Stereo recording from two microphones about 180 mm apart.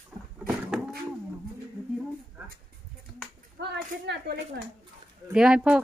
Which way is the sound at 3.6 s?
70° right (ahead or behind).